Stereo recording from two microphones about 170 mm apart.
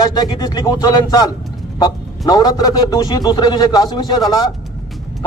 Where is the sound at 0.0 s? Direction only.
20° left (ahead or behind).